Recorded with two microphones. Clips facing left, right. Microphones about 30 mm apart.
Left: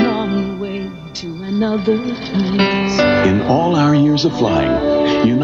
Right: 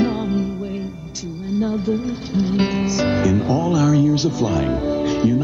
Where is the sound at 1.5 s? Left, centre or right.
Left.